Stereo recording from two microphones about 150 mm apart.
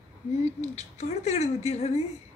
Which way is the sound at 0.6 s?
50° left (ahead or behind).